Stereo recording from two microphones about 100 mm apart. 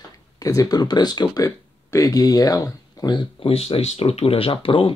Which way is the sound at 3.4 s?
75° left (ahead or behind).